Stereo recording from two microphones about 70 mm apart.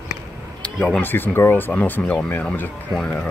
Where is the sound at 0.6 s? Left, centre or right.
Centre.